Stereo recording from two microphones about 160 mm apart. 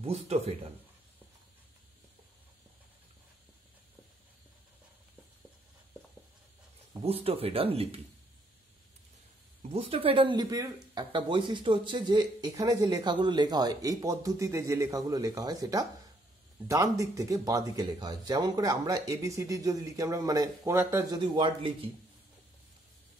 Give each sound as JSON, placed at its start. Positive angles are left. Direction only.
{"t": 0.0, "sound": "speech", "side_deg": -40}
{"t": 7.0, "sound": "speech", "side_deg": -35}
{"t": 9.6, "sound": "speech", "side_deg": -40}
{"t": 21.2, "sound": "speech", "side_deg": -30}